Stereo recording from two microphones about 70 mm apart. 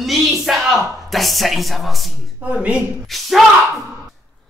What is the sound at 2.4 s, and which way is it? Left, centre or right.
Speech, centre.